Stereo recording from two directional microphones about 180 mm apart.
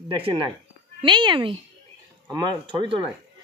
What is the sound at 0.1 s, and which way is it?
A woman's voice, 30° right (ahead or behind).